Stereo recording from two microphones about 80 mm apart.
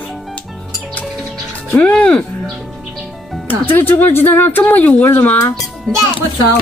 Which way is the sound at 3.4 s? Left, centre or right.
Left.